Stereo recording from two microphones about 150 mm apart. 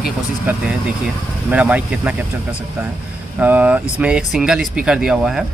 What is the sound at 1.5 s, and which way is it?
Speech, 10° right (ahead or behind).